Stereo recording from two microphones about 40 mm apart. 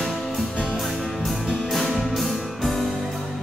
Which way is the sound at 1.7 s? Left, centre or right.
Centre.